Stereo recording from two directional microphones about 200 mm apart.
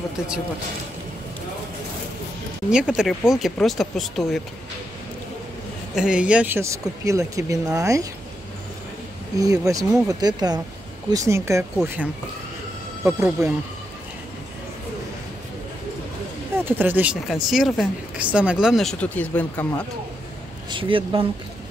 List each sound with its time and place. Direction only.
2.7 s speech: 5° right (ahead or behind)
5.9 s speech: 5° right (ahead or behind)
9.4 s speech: 15° right (ahead or behind)
16.6 s speech: 10° right (ahead or behind); by 19.7 s 10° left (ahead or behind)
20.7 s speech: 25° right (ahead or behind)